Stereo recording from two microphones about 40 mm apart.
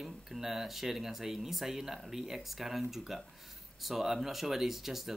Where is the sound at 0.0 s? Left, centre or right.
Centre.